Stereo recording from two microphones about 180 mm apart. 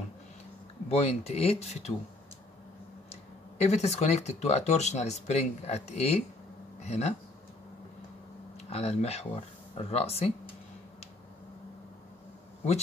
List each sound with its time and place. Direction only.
0.8 s speech: 35° left (ahead or behind)
3.1 s speech: 35° left (ahead or behind)
8.5 s speech: 35° left (ahead or behind)